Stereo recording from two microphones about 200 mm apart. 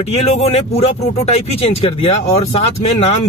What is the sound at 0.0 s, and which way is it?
Speech, 30° left (ahead or behind).